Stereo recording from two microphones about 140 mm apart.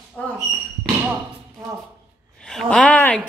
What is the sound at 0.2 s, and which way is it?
Speech, 10° left (ahead or behind).